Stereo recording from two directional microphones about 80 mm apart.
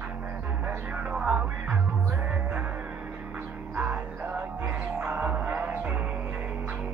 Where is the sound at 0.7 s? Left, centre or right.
Centre.